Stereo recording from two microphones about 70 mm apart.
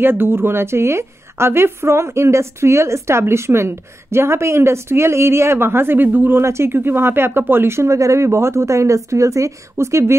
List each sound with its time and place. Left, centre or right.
0.0 s a woman's voice: right
6.4 s a woman's voice: right